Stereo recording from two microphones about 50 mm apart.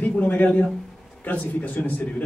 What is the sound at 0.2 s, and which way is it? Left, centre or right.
A man's voice, left.